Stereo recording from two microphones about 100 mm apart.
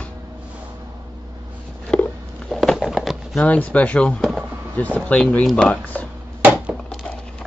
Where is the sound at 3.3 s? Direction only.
15° left (ahead or behind).